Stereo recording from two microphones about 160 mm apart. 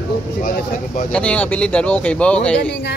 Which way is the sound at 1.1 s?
10° left (ahead or behind).